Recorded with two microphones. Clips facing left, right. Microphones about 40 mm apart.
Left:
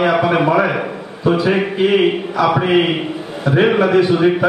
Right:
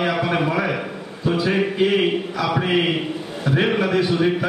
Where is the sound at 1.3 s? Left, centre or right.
Centre.